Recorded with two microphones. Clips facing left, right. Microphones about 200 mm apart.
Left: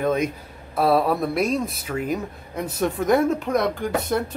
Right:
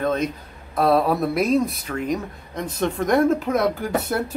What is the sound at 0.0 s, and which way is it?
Speech, 10° left (ahead or behind).